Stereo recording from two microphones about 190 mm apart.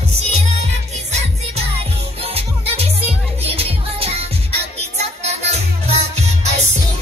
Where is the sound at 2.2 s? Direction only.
30° right (ahead or behind).